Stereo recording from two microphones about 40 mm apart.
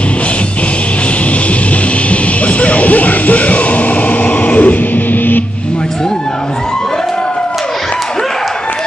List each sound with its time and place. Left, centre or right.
2.0 s music: left